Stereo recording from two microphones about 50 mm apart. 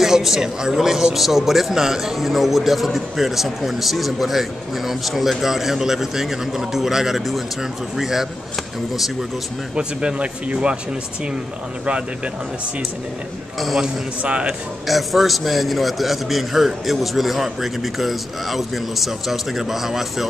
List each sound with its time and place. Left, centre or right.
0.0 s a man's voice: centre
9.8 s speech: right
14.9 s a man's voice: centre